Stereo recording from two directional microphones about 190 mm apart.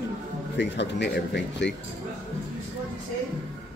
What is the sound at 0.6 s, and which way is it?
Speech, 65° left (ahead or behind).